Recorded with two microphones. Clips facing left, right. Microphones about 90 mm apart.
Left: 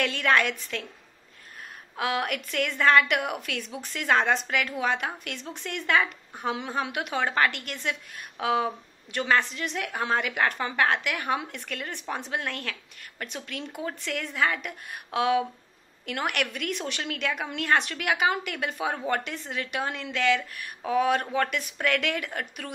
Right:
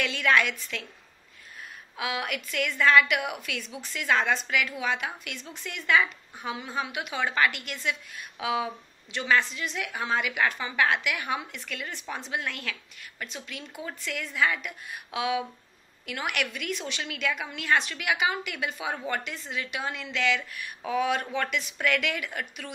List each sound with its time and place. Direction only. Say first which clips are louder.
0.0 s a woman's voice: left 1 dB; 50° left (ahead or behind)
2.0 s a woman's voice: left 3 dB; 50° left (ahead or behind)